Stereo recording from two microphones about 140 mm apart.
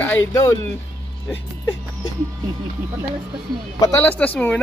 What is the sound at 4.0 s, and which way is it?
Speech, 10° left (ahead or behind).